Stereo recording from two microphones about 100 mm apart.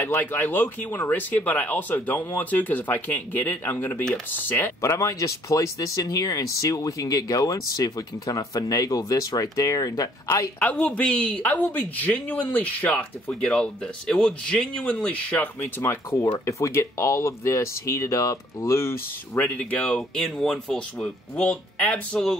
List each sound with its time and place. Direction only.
0.0 s speech: 20° left (ahead or behind)
10.6 s speech: 15° left (ahead or behind)
19.3 s speech: 15° left (ahead or behind)